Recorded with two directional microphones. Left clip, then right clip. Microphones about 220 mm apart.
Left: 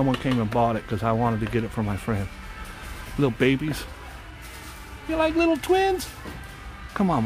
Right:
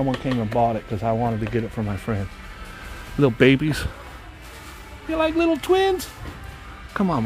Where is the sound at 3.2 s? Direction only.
25° right (ahead or behind).